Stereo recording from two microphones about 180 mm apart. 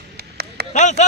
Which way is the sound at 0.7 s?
40° left (ahead or behind).